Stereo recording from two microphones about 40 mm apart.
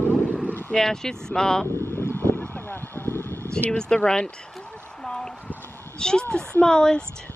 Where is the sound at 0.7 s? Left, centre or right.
Centre.